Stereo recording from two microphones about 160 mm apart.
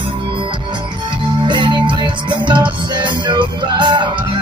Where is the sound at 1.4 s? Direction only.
30° right (ahead or behind).